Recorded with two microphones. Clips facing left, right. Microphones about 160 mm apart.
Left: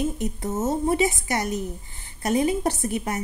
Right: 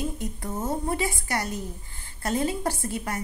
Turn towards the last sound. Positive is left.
turn(degrees=20)  # may be behind; listen again after turning